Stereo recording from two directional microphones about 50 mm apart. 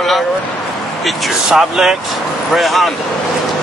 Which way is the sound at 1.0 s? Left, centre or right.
Centre.